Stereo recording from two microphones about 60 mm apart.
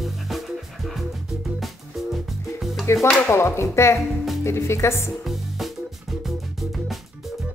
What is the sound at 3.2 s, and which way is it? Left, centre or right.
Speech, left.